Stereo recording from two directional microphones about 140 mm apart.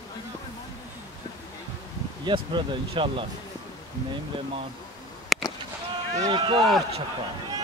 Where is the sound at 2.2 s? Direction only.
35° right (ahead or behind).